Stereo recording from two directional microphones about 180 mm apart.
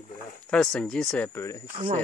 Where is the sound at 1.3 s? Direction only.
15° left (ahead or behind).